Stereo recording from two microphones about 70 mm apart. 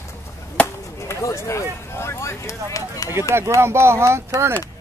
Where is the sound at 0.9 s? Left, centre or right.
Left.